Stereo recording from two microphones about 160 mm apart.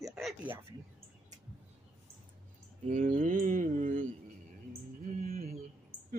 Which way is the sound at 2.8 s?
55° right (ahead or behind).